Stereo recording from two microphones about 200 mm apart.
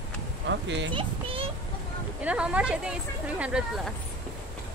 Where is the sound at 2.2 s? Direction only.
5° right (ahead or behind).